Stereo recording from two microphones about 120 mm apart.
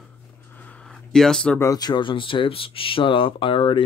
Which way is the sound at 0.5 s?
10° left (ahead or behind).